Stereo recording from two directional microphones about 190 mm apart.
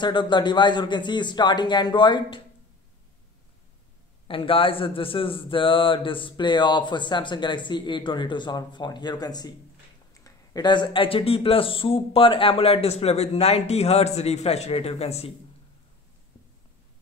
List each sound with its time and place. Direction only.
0.0 s speech: 25° left (ahead or behind)
4.3 s speech: 30° left (ahead or behind)